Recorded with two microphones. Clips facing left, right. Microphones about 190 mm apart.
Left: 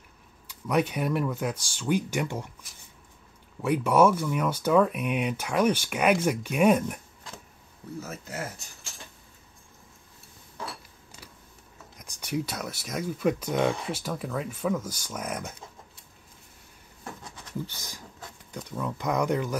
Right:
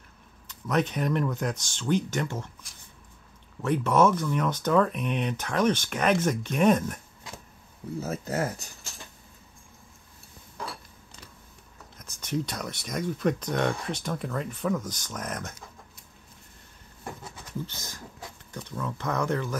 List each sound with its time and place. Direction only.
0.5 s speech: 10° left (ahead or behind)
3.6 s speech: 10° left (ahead or behind)
8.0 s speech: 35° right (ahead or behind)
12.0 s speech: 10° left (ahead or behind)
17.0 s a sound: 5° right (ahead or behind)
17.6 s speech: 15° left (ahead or behind)